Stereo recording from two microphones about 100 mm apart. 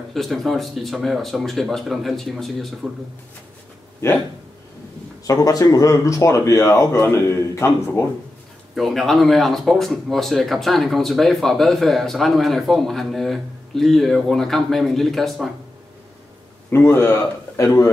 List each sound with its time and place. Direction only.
0.1 s speech: centre (ahead or behind)
5.2 s speech: 35° left (ahead or behind)
8.7 s speech: centre (ahead or behind)
16.7 s a man's voice: 25° left (ahead or behind)